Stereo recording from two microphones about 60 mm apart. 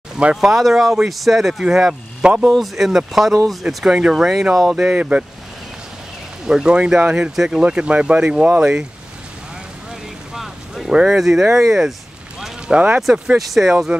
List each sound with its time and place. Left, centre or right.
0.4 s speech: centre
2.5 s speech: centre
6.4 s speech: centre
10.3 s a sound: centre
11.0 s speech: centre
12.4 s boat: centre
13.4 s speech: centre